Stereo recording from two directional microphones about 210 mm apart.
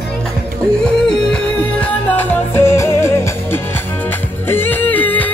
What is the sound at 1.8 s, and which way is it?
Music, 10° left (ahead or behind).